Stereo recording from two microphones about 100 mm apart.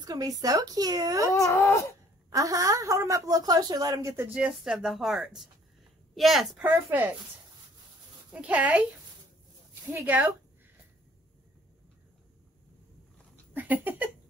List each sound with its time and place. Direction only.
0.0 s a woman's voice: 40° right (ahead or behind)
1.3 s speech: 30° left (ahead or behind)
2.3 s a woman's voice: 35° right (ahead or behind)
4.3 s speech: 5° right (ahead or behind)
6.9 s speech: 20° right (ahead or behind)
8.3 s speech: 15° right (ahead or behind)
9.9 s speech: 15° right (ahead or behind)
13.5 s a sound: 20° right (ahead or behind)